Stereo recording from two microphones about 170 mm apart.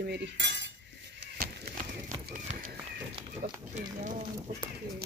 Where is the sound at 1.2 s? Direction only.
65° right (ahead or behind).